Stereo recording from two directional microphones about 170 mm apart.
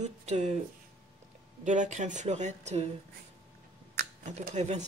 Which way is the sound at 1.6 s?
45° right (ahead or behind).